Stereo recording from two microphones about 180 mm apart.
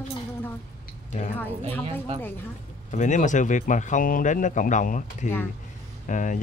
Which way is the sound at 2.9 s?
40° left (ahead or behind).